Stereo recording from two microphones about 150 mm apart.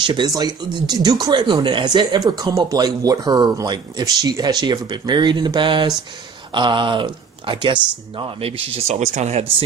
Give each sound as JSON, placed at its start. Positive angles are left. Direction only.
{"t": 0.0, "sound": "speech", "side_deg": -30}